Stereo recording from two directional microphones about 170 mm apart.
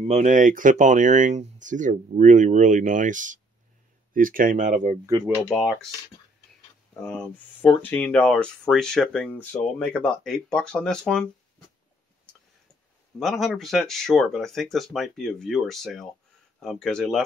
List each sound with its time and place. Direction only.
0.1 s speech: 45° right (ahead or behind)
5.5 s speech: centre (ahead or behind)
6.9 s speech: 5° left (ahead or behind)
13.2 s speech: centre (ahead or behind)